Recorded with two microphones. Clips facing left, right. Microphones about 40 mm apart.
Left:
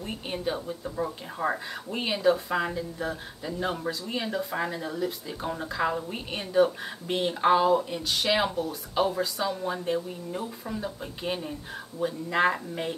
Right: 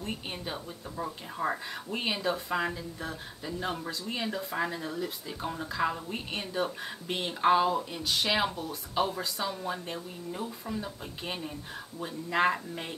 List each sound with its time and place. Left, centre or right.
0.0 s speech: centre